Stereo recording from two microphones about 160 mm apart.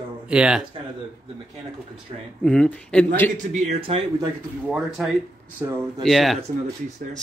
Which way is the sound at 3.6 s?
35° right (ahead or behind).